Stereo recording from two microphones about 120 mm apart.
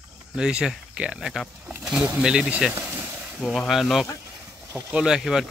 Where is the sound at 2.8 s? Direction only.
10° right (ahead or behind).